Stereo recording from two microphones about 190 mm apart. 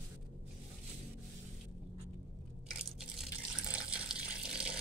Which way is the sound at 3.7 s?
5° right (ahead or behind).